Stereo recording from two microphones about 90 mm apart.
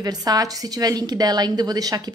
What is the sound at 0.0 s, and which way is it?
A woman's voice, 45° right (ahead or behind).